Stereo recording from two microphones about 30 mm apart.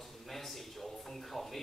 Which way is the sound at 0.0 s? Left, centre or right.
Centre.